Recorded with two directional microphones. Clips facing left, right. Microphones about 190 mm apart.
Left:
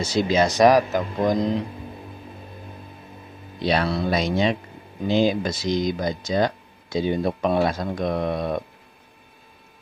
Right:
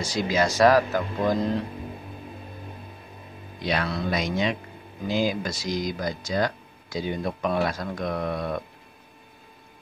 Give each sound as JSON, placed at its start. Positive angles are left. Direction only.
{"t": 0.0, "sound": "speech", "side_deg": 25}
{"t": 3.6, "sound": "speech", "side_deg": 30}